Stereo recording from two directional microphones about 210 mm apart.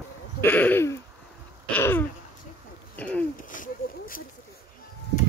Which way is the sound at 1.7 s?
10° left (ahead or behind).